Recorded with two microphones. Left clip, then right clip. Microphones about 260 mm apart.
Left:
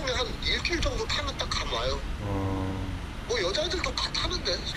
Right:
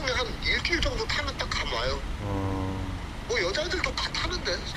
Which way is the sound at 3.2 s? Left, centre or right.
Right.